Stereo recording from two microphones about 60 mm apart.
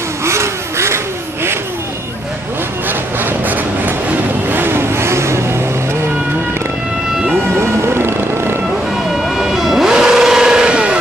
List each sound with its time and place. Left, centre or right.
0.2 s vehicle: right
2.9 s vehicle: right
7.6 s music: right
8.6 s vehicle: centre